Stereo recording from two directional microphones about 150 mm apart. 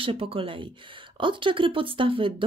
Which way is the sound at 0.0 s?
40° right (ahead or behind).